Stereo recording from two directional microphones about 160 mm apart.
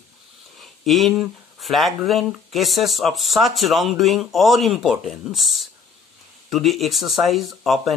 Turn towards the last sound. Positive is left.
turn(degrees=0)  # may be behind; listen again after turning